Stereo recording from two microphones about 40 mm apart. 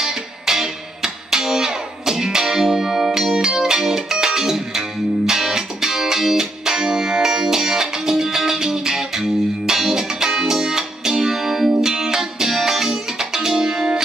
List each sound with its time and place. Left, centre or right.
0.0 s music: centre